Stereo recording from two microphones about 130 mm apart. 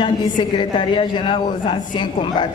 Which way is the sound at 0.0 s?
40° left (ahead or behind).